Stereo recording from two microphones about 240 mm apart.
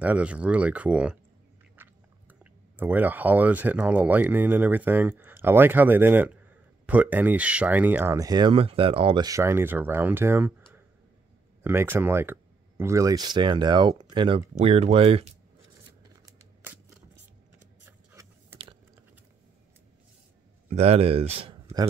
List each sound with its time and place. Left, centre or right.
0.0 s speech: centre
1.8 s biting: centre
2.8 s speech: centre
11.6 s speech: centre
17.8 s printer: centre
20.7 s speech: right